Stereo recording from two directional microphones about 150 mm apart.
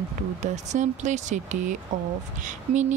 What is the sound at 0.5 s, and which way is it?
Speech, 50° right (ahead or behind).